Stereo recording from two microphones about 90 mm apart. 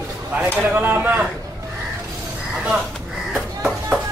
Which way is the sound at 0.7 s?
20° right (ahead or behind).